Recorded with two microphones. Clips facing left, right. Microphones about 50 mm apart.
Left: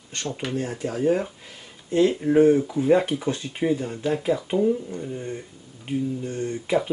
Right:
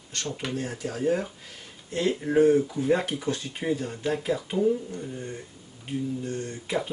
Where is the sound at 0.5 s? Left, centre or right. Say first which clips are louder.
Left 5 dB; left.